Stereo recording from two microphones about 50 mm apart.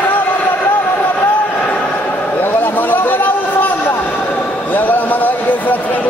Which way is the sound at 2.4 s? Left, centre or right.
Left.